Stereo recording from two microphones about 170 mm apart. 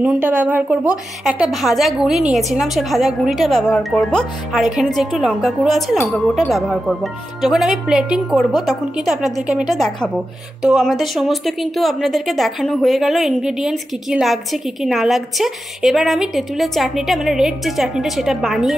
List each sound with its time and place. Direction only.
0.0 s a woman's voice: 5° right (ahead or behind)